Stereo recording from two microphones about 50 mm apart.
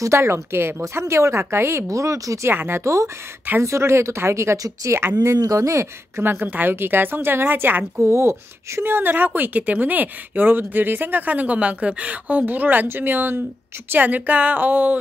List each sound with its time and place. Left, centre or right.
0.0 s speech: right
1.4 s speech: right
2.5 s a woman's voice: right
2.8 s speech: right
3.6 s speech: right
6.2 s a woman's voice: right
8.0 s a woman's voice: right
12.8 s a woman's voice: right
13.9 s a woman's voice: right